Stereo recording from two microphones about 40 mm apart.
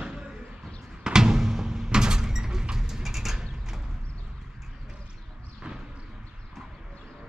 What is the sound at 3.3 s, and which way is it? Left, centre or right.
Creak, centre.